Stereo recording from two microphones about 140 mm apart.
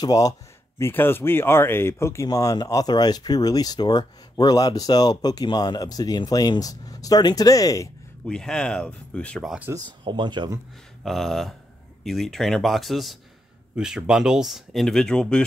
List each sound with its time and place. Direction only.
0.0 s speech: 25° left (ahead or behind)
0.7 s speech: 15° left (ahead or behind)
8.3 s speech: 5° left (ahead or behind)
9.8 s speech: 35° right (ahead or behind)
11.1 s speech: centre (ahead or behind)